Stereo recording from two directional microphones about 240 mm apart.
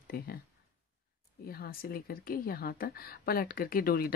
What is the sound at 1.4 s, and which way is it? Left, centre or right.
Speech, left.